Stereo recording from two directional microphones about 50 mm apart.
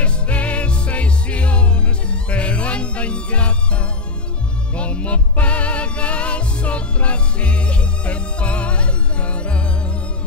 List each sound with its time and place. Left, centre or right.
0.0 s music: left